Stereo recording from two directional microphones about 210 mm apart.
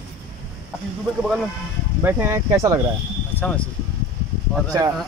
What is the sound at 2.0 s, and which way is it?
Speech, 15° right (ahead or behind).